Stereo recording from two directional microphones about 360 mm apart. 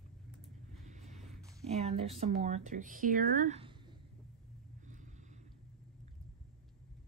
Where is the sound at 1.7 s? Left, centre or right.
Centre.